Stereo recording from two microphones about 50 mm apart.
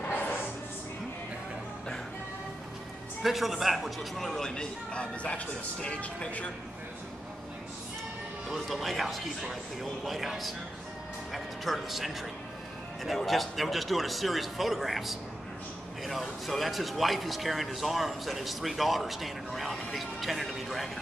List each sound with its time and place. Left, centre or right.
0.1 s a sound: left
3.2 s speech: centre
4.9 s speech: left
8.5 s speech: centre
11.3 s music: centre
13.0 s speech: centre